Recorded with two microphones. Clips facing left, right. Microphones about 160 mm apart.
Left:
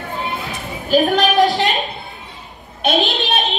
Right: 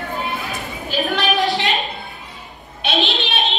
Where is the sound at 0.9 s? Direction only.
45° left (ahead or behind).